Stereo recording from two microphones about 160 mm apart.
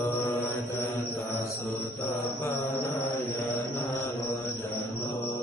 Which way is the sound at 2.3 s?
15° left (ahead or behind).